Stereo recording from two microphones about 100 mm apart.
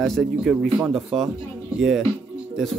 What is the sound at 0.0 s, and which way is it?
Speech, centre (ahead or behind).